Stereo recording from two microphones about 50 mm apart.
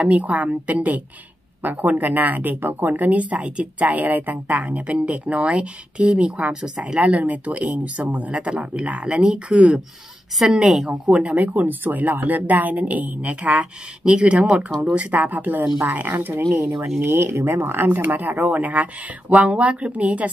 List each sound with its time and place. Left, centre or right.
0.0 s speech: right
3.9 s speech: right
10.4 s speech: centre
10.8 s speech: right
17.0 s speech: right